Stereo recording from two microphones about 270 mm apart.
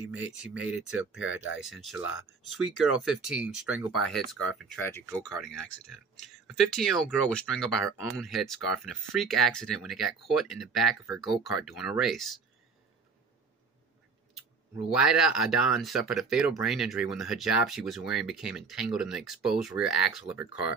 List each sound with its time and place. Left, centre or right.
0.1 s speech: centre
1.2 s speech: left
3.0 s speech: centre
14.9 s speech: centre